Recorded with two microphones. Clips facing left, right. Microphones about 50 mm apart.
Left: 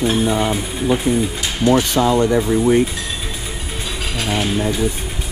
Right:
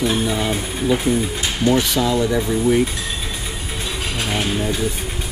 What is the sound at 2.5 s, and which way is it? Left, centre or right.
Speech, centre.